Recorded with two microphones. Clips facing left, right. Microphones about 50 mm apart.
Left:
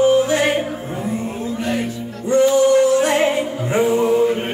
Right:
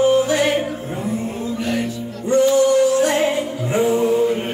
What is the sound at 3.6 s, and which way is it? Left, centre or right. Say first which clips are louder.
Music: left 1 dB; left.